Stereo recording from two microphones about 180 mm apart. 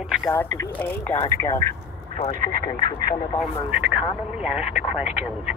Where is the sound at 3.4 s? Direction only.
5° right (ahead or behind).